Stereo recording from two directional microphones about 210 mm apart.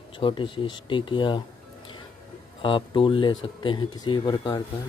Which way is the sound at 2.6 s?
25° left (ahead or behind).